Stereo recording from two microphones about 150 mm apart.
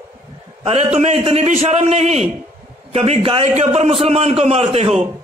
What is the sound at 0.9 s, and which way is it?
A man's voice, 45° right (ahead or behind).